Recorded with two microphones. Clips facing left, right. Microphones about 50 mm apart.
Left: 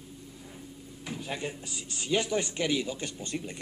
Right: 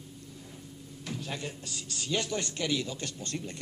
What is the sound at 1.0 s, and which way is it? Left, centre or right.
Speech, centre.